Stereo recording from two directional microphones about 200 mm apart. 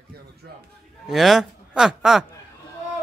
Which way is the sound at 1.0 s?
Centre (ahead or behind).